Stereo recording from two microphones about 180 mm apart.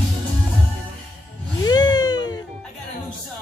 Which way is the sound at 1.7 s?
20° left (ahead or behind).